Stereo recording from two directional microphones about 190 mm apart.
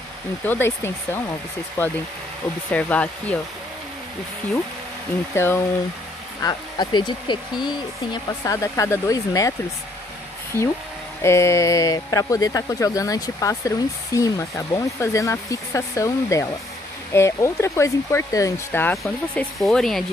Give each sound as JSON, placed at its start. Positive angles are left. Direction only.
{"t": 0.5, "sound": "speech", "side_deg": 10}
{"t": 5.3, "sound": "speech", "side_deg": 10}
{"t": 6.4, "sound": "speech", "side_deg": 25}
{"t": 11.2, "sound": "speech", "side_deg": 15}